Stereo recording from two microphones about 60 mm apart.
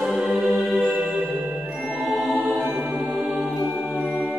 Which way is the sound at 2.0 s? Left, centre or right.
Centre.